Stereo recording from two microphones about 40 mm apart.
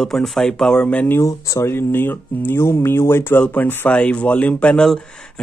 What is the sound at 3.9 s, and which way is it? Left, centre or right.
Speech, left.